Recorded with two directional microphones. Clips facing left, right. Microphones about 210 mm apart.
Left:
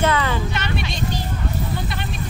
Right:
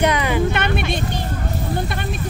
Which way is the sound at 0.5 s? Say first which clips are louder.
Right 5 dB; 55° right (ahead or behind).